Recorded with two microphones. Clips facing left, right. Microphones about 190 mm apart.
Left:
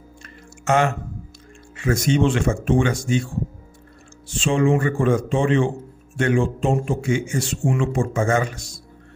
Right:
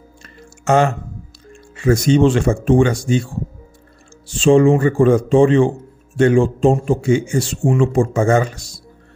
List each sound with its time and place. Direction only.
0.7 s a man's voice: 35° right (ahead or behind)
4.4 s a man's voice: 35° right (ahead or behind)